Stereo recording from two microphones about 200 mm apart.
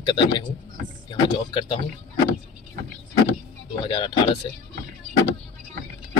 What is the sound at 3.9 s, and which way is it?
Speech, 25° left (ahead or behind).